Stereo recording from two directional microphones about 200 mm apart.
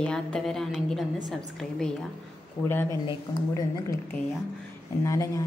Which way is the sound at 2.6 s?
10° left (ahead or behind).